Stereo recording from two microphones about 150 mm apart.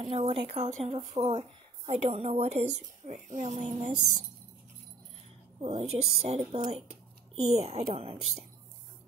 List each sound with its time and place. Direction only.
0.0 s a woman's voice: 35° right (ahead or behind); by 3.9 s 55° right (ahead or behind)
5.6 s a woman's voice: 45° right (ahead or behind)